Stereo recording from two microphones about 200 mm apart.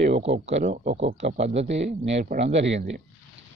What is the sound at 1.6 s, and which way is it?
Speech, 65° right (ahead or behind).